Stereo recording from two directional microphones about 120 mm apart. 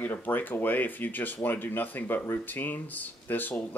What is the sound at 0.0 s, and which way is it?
Speech, 15° left (ahead or behind).